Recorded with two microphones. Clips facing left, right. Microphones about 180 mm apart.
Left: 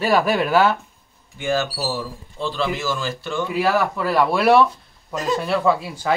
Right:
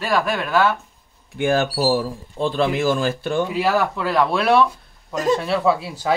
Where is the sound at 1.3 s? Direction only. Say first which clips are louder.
Right 4 dB; 55° right (ahead or behind).